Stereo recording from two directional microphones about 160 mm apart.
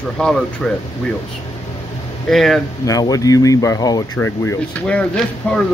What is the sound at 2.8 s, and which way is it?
Speech, 20° left (ahead or behind).